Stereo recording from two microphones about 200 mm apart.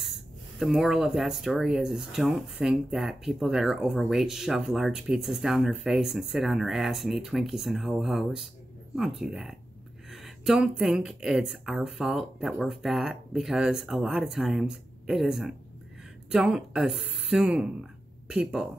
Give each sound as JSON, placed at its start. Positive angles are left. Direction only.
{"t": 0.0, "sound": "speech", "side_deg": 0}